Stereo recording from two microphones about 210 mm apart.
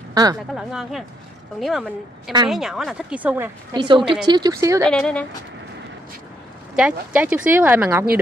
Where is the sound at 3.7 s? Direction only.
25° right (ahead or behind).